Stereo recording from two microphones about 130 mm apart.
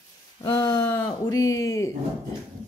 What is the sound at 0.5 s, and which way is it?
Speech, 25° left (ahead or behind).